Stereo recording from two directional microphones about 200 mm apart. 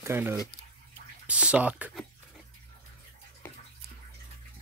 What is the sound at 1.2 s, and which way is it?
Pant, 5° right (ahead or behind).